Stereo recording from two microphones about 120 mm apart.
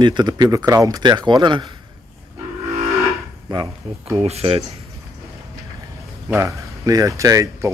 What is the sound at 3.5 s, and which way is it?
Speech, 40° right (ahead or behind).